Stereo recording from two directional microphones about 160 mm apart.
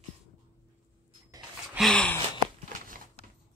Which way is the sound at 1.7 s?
5° left (ahead or behind).